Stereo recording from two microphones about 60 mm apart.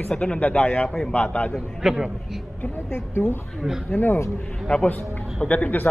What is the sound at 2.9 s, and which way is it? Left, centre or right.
Speech, left.